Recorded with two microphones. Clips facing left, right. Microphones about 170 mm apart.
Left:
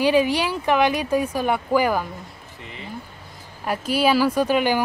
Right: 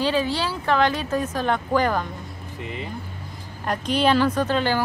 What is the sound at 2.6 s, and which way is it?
Speech, 15° right (ahead or behind).